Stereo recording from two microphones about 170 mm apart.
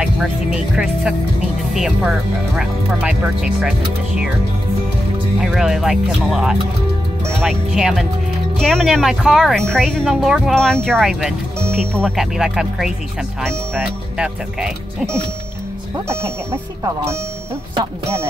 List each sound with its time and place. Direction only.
0.0 s speech: 5° right (ahead or behind)
5.4 s speech: centre (ahead or behind)
16.8 s speech: 15° right (ahead or behind)